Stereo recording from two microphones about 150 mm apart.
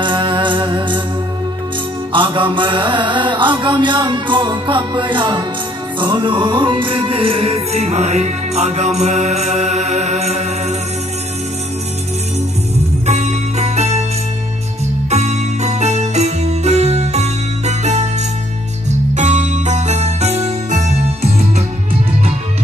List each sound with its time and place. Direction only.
0.0 s music: 35° right (ahead or behind)
2.1 s mantra: 35° right (ahead or behind)
5.9 s music: 30° right (ahead or behind); by 10.5 s 50° right (ahead or behind)
13.0 s music: 50° right (ahead or behind)
15.0 s music: 45° right (ahead or behind)